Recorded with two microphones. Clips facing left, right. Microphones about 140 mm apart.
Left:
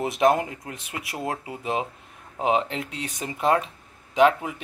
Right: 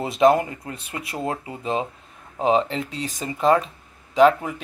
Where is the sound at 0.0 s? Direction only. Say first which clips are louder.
Right 3 dB; 15° left (ahead or behind).